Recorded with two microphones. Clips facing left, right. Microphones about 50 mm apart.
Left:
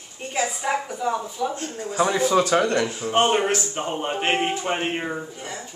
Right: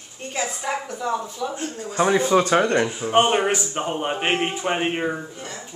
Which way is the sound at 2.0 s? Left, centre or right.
Right.